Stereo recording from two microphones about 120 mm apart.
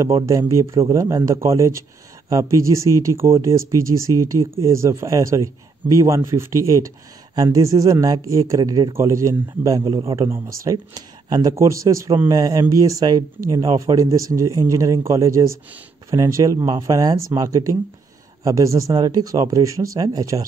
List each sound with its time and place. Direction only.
0.0 s a man's voice: 25° right (ahead or behind)
10.3 s a man's voice: 25° right (ahead or behind)